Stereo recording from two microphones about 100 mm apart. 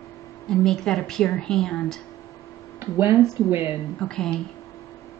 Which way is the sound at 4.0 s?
5° left (ahead or behind).